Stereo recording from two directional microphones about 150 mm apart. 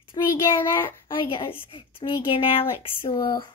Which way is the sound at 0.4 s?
15° left (ahead or behind).